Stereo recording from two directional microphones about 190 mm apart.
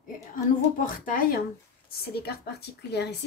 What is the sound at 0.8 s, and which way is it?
Speech, 45° left (ahead or behind).